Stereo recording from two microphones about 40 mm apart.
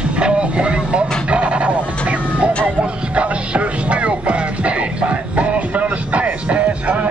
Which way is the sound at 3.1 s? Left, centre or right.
Right.